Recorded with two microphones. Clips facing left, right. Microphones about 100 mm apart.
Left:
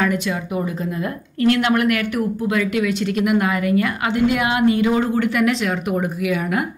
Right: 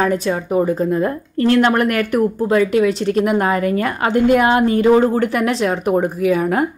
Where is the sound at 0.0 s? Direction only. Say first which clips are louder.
Right 3 dB; 35° right (ahead or behind).